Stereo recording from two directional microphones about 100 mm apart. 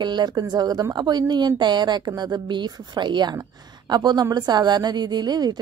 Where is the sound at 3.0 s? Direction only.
50° right (ahead or behind).